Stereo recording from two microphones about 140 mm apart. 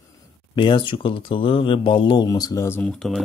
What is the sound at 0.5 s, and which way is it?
Speech, 35° left (ahead or behind).